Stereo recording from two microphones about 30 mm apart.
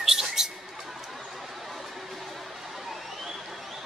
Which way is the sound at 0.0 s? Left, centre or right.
Centre.